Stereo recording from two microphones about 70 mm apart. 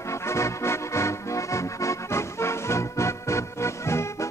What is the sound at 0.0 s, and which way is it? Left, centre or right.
Music, left.